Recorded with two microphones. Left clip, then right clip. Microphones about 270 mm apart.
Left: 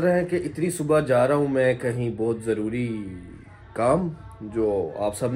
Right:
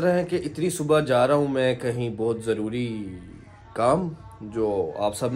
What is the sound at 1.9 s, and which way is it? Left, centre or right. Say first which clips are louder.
Speech: even; centre.